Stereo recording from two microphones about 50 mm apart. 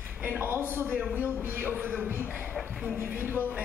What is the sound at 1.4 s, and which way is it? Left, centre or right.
Speech, right.